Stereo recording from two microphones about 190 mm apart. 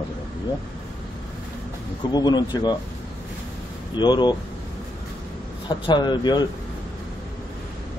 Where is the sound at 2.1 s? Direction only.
20° left (ahead or behind).